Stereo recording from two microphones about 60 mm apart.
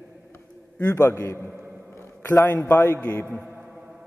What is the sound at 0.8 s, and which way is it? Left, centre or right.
Speech, left.